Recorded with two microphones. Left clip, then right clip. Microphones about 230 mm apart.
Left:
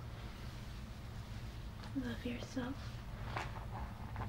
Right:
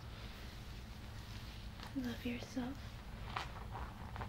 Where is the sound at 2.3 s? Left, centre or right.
Centre.